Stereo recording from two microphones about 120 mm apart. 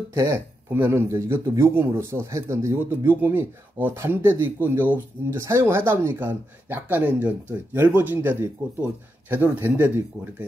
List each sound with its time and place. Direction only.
0.1 s a man's voice: 25° right (ahead or behind)